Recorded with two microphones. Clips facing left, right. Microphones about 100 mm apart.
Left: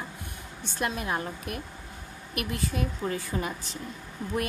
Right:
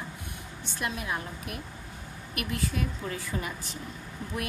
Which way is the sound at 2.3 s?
30° left (ahead or behind).